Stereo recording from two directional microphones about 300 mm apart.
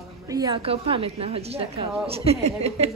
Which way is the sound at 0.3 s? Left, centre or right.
Centre.